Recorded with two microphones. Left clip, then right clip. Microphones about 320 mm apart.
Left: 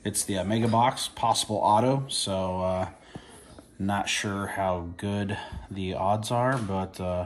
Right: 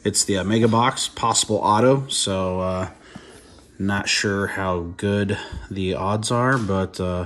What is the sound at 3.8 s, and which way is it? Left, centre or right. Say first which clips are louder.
Speech: right 6 dB; centre.